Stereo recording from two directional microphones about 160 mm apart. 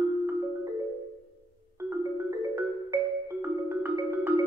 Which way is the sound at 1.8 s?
15° right (ahead or behind).